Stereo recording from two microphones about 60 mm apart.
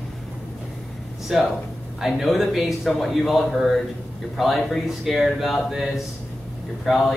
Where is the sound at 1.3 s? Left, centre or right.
Centre.